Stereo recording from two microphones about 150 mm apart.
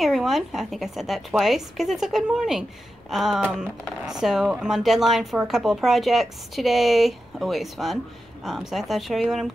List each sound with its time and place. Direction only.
0.0 s speech: centre (ahead or behind)